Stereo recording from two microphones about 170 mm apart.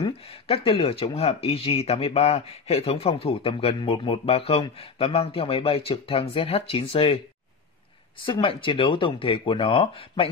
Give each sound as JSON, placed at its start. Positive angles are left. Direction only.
{"t": 0.0, "sound": "speech", "side_deg": 35}
{"t": 8.3, "sound": "speech", "side_deg": 30}